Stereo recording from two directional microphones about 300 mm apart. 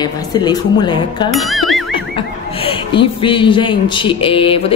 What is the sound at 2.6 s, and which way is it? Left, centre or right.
A woman's voice, centre.